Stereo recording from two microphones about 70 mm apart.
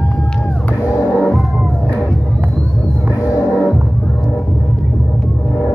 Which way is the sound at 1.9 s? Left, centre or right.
Centre.